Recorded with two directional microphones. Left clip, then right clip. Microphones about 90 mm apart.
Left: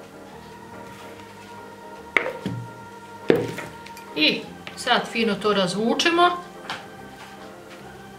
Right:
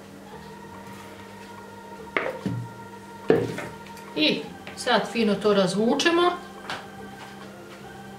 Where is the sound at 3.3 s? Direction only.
30° left (ahead or behind).